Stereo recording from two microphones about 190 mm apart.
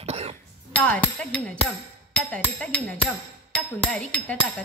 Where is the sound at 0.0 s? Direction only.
35° right (ahead or behind).